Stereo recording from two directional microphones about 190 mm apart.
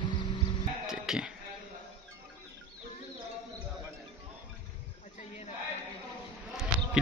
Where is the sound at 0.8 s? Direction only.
Centre (ahead or behind).